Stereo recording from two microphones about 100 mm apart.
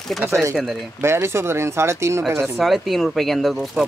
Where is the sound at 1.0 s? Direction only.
25° right (ahead or behind).